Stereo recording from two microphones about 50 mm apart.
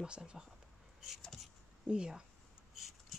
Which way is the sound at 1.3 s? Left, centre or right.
Centre.